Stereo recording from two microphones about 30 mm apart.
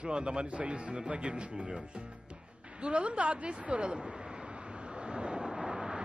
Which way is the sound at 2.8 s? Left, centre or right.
Right.